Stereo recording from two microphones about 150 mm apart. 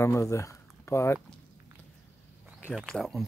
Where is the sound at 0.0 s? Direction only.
20° left (ahead or behind).